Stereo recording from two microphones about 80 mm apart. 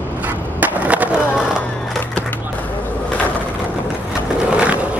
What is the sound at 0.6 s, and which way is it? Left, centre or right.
Skateboard, centre.